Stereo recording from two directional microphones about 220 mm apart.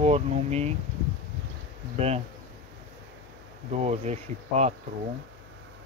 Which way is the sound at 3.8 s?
30° right (ahead or behind).